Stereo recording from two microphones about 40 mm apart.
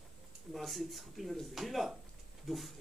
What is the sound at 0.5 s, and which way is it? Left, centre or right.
A man's voice, centre.